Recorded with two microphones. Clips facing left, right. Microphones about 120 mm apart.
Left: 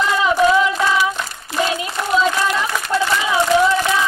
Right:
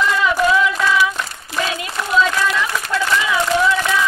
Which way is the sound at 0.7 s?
25° left (ahead or behind).